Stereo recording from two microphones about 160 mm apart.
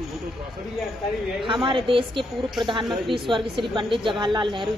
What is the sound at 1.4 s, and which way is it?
A woman's voice, 30° right (ahead or behind).